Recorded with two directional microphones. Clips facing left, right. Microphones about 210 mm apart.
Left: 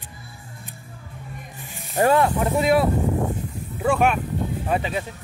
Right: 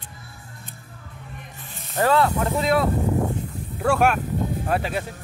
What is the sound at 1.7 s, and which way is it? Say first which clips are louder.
Speech: left 2 dB; 15° left (ahead or behind).